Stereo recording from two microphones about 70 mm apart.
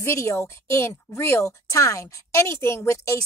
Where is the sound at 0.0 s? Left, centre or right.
Left.